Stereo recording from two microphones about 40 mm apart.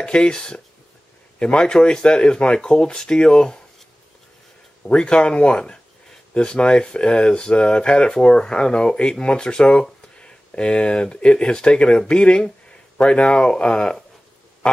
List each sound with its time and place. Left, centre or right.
0.0 s speech: left
4.8 s speech: left